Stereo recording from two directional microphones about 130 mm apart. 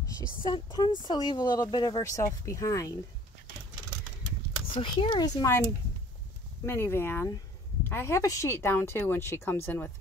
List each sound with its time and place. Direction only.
0.4 s speech: 35° left (ahead or behind)
4.7 s speech: 40° left (ahead or behind)
6.6 s speech: 20° left (ahead or behind)